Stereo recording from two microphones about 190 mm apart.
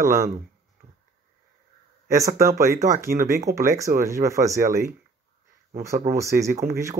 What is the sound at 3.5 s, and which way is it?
Speech, 55° right (ahead or behind).